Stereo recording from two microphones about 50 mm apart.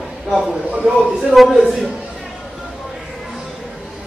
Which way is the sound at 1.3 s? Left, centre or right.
Centre.